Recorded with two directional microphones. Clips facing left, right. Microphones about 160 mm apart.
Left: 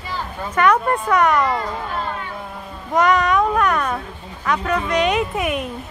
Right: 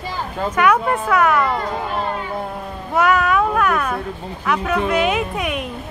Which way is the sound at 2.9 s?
5° right (ahead or behind).